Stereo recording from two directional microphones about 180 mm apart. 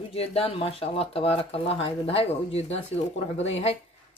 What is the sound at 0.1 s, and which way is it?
Speech, 35° left (ahead or behind).